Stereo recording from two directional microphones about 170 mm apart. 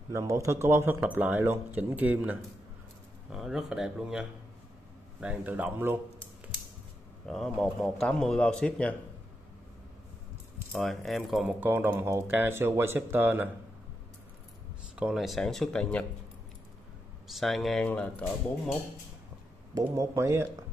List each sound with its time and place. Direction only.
0.1 s speech: 20° right (ahead or behind)
7.2 s speech: centre (ahead or behind)
10.7 s speech: centre (ahead or behind)
15.0 s speech: 5° right (ahead or behind)
17.3 s speech: centre (ahead or behind)
19.7 s speech: 20° right (ahead or behind)